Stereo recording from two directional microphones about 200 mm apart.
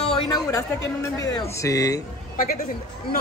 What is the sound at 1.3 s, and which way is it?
Speech, 15° left (ahead or behind).